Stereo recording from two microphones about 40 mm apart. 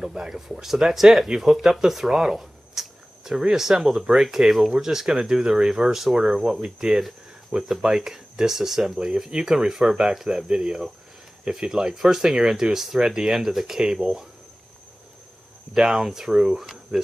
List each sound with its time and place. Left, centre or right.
0.0 s speech: centre
15.7 s speech: centre